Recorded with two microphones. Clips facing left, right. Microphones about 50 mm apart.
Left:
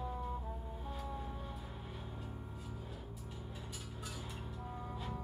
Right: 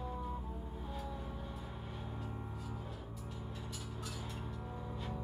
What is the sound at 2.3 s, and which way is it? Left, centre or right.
Music, right.